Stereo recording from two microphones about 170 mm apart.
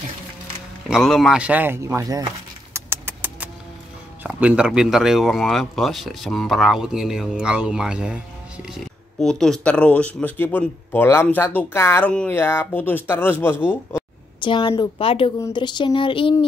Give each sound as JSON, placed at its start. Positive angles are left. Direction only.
{"t": 0.8, "sound": "speech", "side_deg": 0}
{"t": 2.7, "sound": "vehicle", "side_deg": -15}
{"t": 4.2, "sound": "speech", "side_deg": -10}
{"t": 14.4, "sound": "speech", "side_deg": 30}